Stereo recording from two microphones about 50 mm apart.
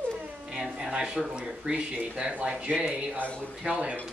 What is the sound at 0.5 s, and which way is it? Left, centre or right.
Speech, centre.